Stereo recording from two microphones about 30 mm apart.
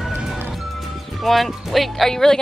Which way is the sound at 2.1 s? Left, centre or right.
Centre.